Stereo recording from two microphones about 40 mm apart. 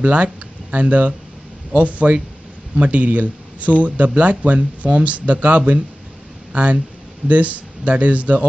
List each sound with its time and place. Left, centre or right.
0.0 s speech: right